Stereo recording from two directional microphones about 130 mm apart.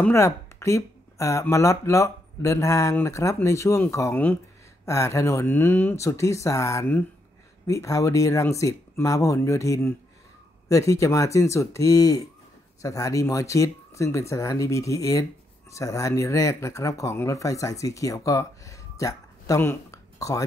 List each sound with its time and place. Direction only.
0.1 s speech: 20° left (ahead or behind)